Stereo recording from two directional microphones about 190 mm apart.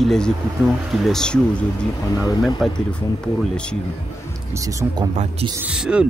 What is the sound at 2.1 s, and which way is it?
Speech, 20° left (ahead or behind).